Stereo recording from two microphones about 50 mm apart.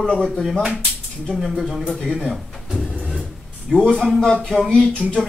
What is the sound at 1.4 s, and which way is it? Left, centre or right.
Speech, centre.